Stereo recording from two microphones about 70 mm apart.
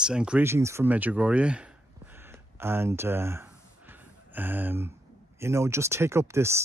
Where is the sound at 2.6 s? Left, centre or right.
Right.